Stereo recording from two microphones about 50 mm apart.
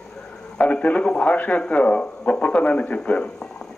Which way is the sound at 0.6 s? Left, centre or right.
Left.